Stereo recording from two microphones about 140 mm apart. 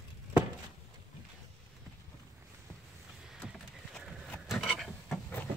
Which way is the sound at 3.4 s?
Centre (ahead or behind).